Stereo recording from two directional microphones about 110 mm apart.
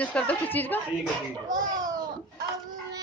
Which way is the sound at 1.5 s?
35° right (ahead or behind).